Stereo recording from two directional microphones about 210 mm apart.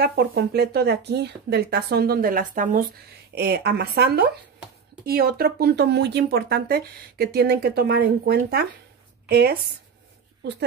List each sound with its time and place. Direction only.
0.0 s speech: 50° right (ahead or behind)